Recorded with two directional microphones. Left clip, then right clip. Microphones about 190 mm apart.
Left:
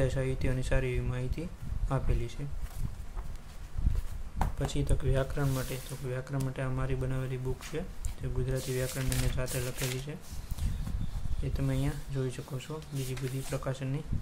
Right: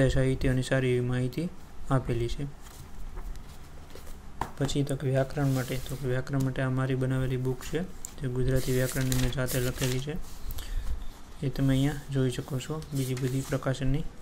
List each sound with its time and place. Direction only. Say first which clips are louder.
0.0 s speech: right 5 dB; 20° right (ahead or behind)
4.6 s speech: right 5 dB; 15° right (ahead or behind)
11.5 s speech: right 7 dB; 20° right (ahead or behind)